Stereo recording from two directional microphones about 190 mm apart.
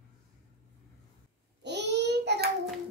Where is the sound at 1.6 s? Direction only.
65° right (ahead or behind).